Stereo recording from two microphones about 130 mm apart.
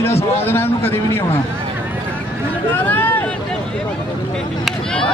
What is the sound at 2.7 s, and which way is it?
Speech, 15° left (ahead or behind).